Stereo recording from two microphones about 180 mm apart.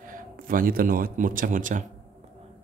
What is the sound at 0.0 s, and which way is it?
A man's voice, 50° right (ahead or behind).